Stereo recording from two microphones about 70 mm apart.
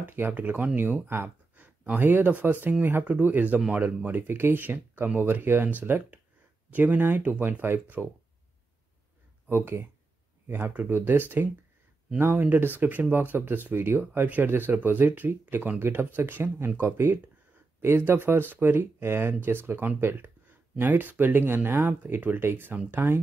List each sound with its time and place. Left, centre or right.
0.0 s speech: right
9.5 s speech: right